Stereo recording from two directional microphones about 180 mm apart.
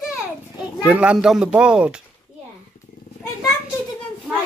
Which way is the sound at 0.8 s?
5° right (ahead or behind).